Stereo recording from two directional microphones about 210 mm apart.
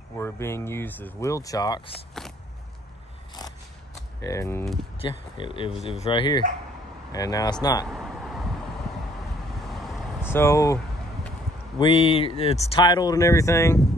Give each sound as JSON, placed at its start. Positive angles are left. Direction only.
{"t": 0.2, "sound": "speech", "side_deg": 10}
{"t": 4.3, "sound": "speech", "side_deg": 15}
{"t": 4.9, "sound": "speech", "side_deg": 25}
{"t": 7.9, "sound": "a sound", "side_deg": 0}
{"t": 9.6, "sound": "vehicle", "side_deg": 0}
{"t": 10.3, "sound": "speech", "side_deg": 15}
{"t": 11.8, "sound": "speech", "side_deg": 25}